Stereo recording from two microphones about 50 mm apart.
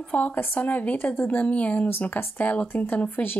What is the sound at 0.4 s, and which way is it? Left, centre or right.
Speech, left.